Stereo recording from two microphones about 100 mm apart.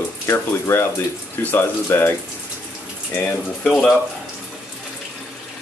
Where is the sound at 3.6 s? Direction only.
5° left (ahead or behind).